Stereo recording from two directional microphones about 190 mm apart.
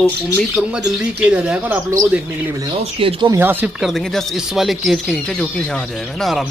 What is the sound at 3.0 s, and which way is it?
Speech, 25° right (ahead or behind).